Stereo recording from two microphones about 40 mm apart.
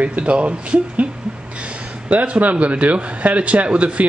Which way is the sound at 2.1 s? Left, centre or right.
Right.